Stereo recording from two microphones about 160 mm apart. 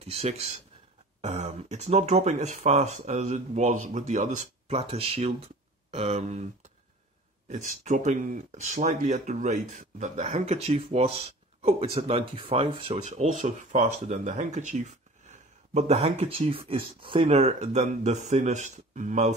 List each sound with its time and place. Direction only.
0.0 s speech: 40° right (ahead or behind)
7.4 s speech: 45° right (ahead or behind)